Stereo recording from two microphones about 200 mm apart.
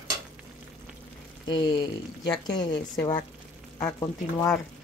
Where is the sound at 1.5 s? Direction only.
25° left (ahead or behind).